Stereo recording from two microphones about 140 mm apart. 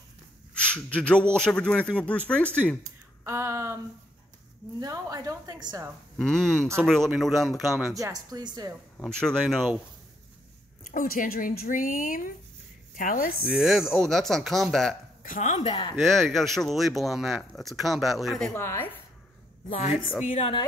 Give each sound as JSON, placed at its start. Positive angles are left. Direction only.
{"t": 0.6, "sound": "a man's voice", "side_deg": 10}
{"t": 3.3, "sound": "a woman's voice", "side_deg": -20}
{"t": 6.1, "sound": "speech", "side_deg": 5}
{"t": 7.9, "sound": "a woman's voice", "side_deg": -25}
{"t": 8.9, "sound": "speech", "side_deg": 5}
{"t": 10.8, "sound": "speech", "side_deg": 80}
{"t": 13.4, "sound": "speech", "side_deg": -5}
{"t": 15.2, "sound": "speech", "side_deg": 75}
{"t": 15.5, "sound": "speech", "side_deg": 40}
{"t": 16.0, "sound": "speech", "side_deg": 0}
{"t": 18.5, "sound": "speech", "side_deg": 15}
{"t": 19.7, "sound": "a woman's voice", "side_deg": 55}